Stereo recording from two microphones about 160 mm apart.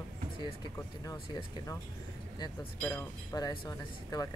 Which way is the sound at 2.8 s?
15° left (ahead or behind).